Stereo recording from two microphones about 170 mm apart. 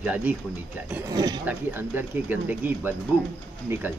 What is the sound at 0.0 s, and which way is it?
Speech, 10° right (ahead or behind).